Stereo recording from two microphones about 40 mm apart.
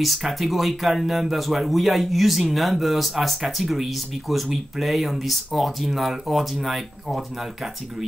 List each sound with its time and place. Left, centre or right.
0.0 s speech: centre